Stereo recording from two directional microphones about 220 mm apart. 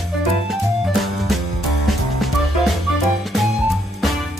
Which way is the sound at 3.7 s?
Centre (ahead or behind).